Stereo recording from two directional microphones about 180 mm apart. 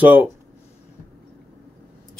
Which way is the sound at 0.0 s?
10° right (ahead or behind).